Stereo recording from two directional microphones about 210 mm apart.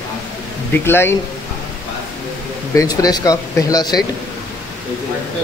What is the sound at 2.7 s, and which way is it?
Speech, 15° left (ahead or behind).